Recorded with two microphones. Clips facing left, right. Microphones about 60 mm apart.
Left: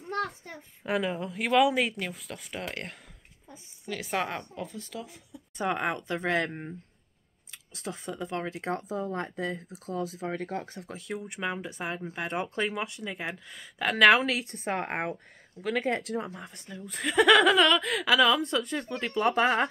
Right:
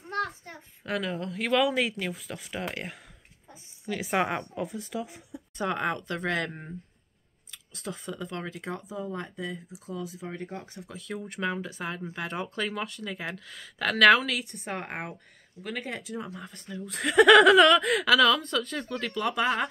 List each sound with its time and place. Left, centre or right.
0.8 s a woman's voice: centre; by 5.4 s right
5.6 s speech: centre
7.7 s speech: left
8.6 s speech: left
9.8 s speech: left
11.1 s speech: centre
14.9 s speech: left
16.3 s speech: centre
16.6 s speech: centre
18.4 s speech: centre